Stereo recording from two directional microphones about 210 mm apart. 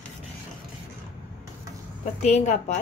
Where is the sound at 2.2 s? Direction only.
30° left (ahead or behind).